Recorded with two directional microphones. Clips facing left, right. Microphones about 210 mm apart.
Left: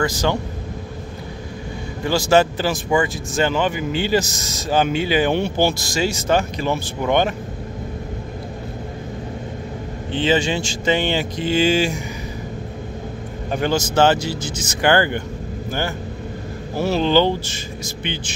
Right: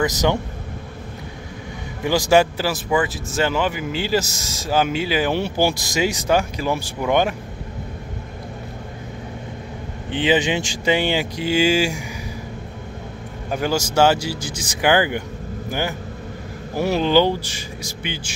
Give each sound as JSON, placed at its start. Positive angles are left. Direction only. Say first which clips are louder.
{"t": 0.0, "sound": "speech", "louder": "right 1 dB", "side_deg": -20}
{"t": 2.0, "sound": "speech", "louder": "even", "side_deg": -15}
{"t": 10.1, "sound": "speech", "louder": "even", "side_deg": -15}
{"t": 13.5, "sound": "speech", "louder": "left 1 dB", "side_deg": -5}
{"t": 16.7, "sound": "speech", "louder": "even", "side_deg": -15}